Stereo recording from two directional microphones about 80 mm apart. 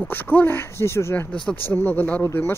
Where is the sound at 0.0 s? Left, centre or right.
Left.